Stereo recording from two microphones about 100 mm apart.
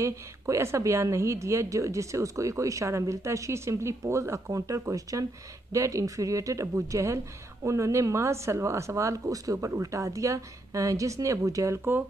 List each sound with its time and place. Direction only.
0.0 s a woman's voice: 30° right (ahead or behind)